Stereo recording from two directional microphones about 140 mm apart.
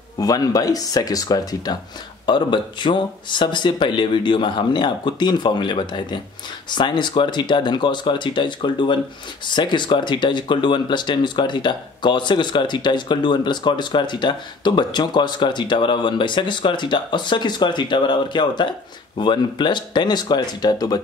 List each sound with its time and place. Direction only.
0.2 s speech: 25° left (ahead or behind)